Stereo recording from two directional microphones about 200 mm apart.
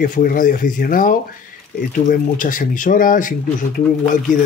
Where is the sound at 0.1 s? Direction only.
45° left (ahead or behind).